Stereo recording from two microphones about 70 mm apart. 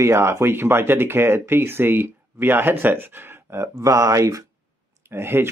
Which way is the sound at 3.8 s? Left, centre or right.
Right.